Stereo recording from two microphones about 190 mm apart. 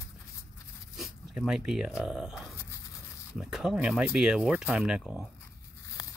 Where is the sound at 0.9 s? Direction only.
Centre (ahead or behind).